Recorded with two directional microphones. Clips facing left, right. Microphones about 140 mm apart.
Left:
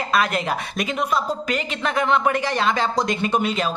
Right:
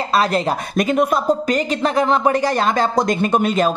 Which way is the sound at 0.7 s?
50° right (ahead or behind).